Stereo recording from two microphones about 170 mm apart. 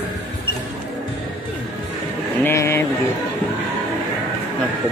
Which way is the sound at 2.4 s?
15° left (ahead or behind).